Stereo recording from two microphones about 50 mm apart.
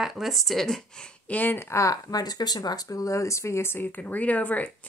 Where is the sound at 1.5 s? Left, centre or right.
Left.